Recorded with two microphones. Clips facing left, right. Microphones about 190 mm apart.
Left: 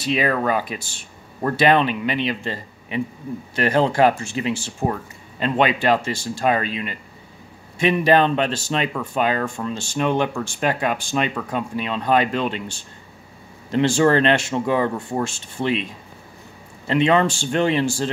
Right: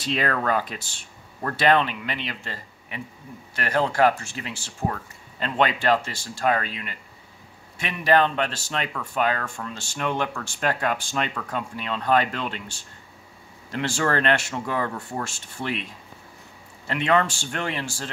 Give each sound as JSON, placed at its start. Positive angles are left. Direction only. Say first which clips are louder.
{"t": 0.0, "sound": "speech", "louder": "left 4 dB", "side_deg": 10}
{"t": 13.7, "sound": "speech", "louder": "left 8 dB", "side_deg": 20}